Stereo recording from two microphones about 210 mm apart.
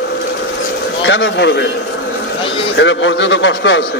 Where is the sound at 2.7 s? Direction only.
60° left (ahead or behind).